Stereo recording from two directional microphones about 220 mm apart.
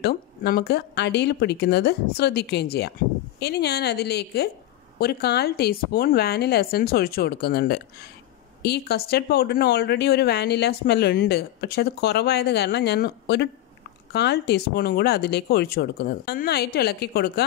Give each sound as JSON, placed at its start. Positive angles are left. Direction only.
{"t": 0.0, "sound": "speech", "side_deg": 45}